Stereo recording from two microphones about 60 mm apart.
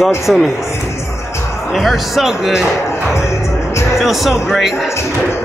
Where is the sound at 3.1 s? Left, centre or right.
Left.